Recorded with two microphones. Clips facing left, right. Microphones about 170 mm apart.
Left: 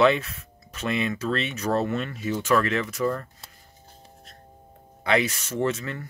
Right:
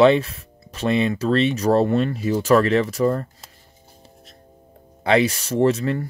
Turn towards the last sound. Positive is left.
turn(degrees=-35)  # may be behind; listen again after turning